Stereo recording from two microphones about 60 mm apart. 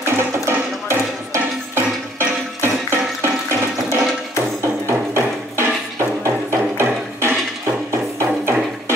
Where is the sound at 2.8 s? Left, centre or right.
Right.